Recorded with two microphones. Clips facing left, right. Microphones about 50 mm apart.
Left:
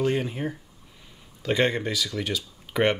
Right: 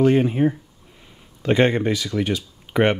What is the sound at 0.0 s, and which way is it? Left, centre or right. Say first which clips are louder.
Speech: right 9 dB; right.